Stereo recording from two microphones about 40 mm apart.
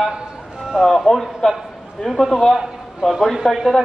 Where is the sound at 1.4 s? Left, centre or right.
Centre.